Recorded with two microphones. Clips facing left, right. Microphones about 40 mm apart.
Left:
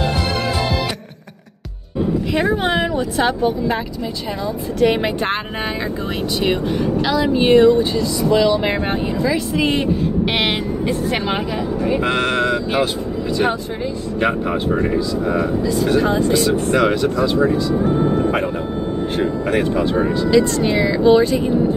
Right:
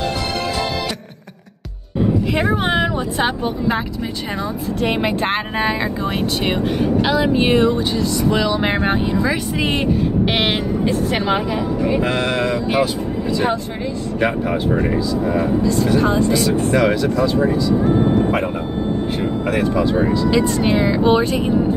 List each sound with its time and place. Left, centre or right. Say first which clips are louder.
2.3 s vehicle: even; right
3.2 s music: left 4 dB; right
4.8 s speech: left 2 dB; centre
6.8 s music: right 1 dB; right
7.3 s speech: left 7 dB; centre
8.3 s music: left 4 dB; centre
12.1 s speech: left 1 dB; left
19.1 s speech: left 4 dB; left
20.6 s music: left 1 dB; right